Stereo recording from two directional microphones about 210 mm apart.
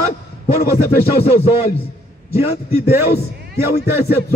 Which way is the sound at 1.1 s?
30° left (ahead or behind).